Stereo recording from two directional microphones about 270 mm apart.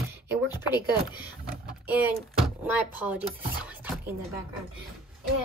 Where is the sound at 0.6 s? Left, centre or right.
Centre.